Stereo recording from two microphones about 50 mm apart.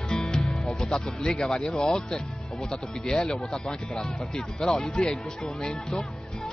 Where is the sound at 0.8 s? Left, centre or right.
Centre.